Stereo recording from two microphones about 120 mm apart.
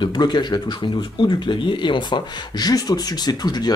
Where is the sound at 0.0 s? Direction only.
40° left (ahead or behind).